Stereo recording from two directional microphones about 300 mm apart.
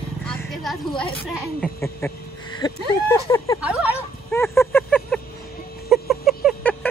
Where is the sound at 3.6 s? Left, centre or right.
Centre.